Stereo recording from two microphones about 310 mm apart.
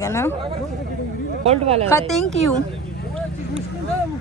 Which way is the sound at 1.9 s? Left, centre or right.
Centre.